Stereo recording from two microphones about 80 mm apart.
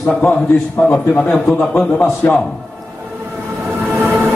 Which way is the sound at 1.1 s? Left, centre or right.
Centre.